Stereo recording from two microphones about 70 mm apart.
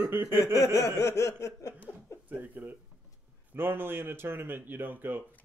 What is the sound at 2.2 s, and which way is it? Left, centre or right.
Speech, right.